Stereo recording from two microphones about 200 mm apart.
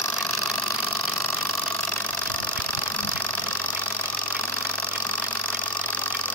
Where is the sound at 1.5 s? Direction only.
10° left (ahead or behind).